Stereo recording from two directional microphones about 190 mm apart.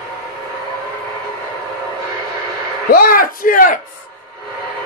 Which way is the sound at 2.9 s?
50° left (ahead or behind).